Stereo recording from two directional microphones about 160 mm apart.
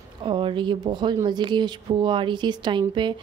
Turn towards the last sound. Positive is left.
turn(degrees=-30)  # may be behind; listen again after turning